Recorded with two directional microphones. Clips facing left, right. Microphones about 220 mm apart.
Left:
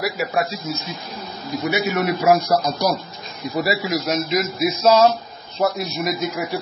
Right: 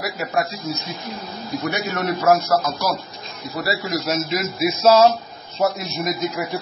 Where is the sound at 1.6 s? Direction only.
5° left (ahead or behind).